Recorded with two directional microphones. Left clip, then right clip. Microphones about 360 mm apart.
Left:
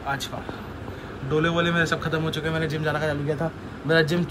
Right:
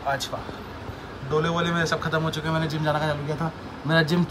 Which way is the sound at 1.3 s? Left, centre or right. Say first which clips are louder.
Left 2 dB; centre.